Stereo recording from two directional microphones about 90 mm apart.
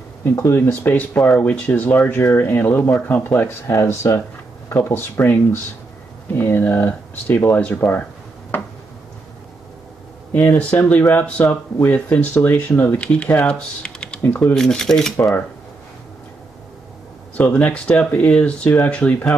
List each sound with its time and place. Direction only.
0.2 s speech: 30° left (ahead or behind)
0.7 s speech: 20° left (ahead or behind)
10.3 s speech: 20° left (ahead or behind)
14.2 s speech: 25° left (ahead or behind)
14.5 s speech: 5° left (ahead or behind)
17.4 s speech: 15° left (ahead or behind)